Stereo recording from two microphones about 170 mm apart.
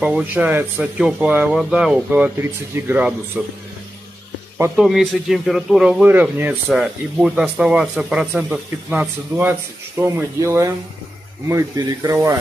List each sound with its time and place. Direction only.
0.0 s speech: 10° right (ahead or behind)
4.7 s speech: centre (ahead or behind); by 12.4 s 15° right (ahead or behind)